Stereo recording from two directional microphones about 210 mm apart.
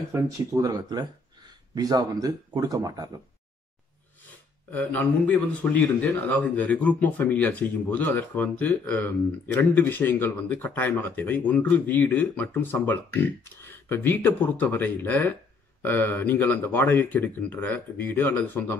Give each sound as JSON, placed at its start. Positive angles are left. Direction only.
{"t": 0.1, "sound": "speech", "side_deg": -15}
{"t": 4.2, "sound": "speech", "side_deg": 10}